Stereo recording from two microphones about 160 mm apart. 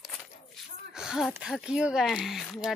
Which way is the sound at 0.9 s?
5° right (ahead or behind).